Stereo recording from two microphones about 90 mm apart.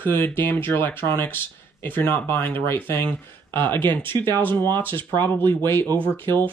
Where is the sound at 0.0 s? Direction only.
25° left (ahead or behind).